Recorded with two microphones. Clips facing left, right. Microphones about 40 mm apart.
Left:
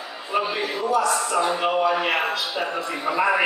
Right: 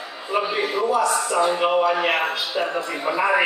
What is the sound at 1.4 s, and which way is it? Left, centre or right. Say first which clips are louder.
A man's voice: right 4 dB; centre.